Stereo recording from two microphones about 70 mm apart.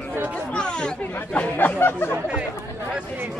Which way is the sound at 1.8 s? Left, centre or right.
Left.